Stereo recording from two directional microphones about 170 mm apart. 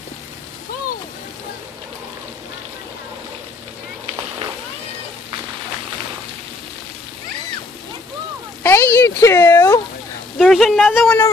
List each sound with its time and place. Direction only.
8.6 s a sound: 15° left (ahead or behind)
10.4 s a woman's voice: centre (ahead or behind)
10.9 s speech: 10° left (ahead or behind)